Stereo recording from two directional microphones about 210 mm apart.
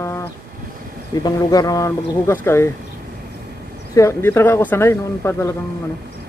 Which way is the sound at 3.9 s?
10° left (ahead or behind).